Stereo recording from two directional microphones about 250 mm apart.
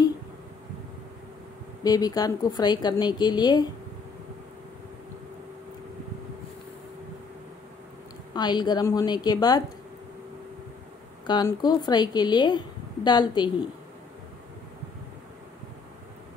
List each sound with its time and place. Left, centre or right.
1.8 s a woman's voice: centre
8.3 s a woman's voice: centre
11.2 s a woman's voice: centre